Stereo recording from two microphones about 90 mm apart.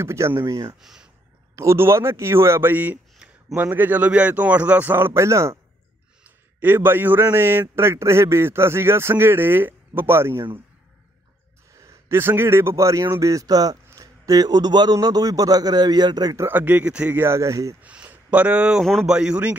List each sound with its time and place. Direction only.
0.0 s speech: 30° right (ahead or behind)
0.7 s speech: 5° right (ahead or behind)
1.5 s a man's voice: 35° right (ahead or behind)
3.2 s a sound: 10° right (ahead or behind)
3.5 s a man's voice: 20° right (ahead or behind)
6.6 s a man's voice: 25° right (ahead or behind)
11.7 s a sound: 35° right (ahead or behind)
12.2 s speech: 25° right (ahead or behind); by 16.3 s 50° right (ahead or behind)
16.3 s a man's voice: 25° right (ahead or behind)
17.2 s speech: 30° right (ahead or behind)
17.8 s a man's voice: 15° right (ahead or behind)